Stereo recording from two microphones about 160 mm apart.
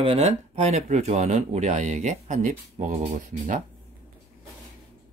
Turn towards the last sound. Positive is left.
turn(degrees=-55)  # may be behind; listen again after turning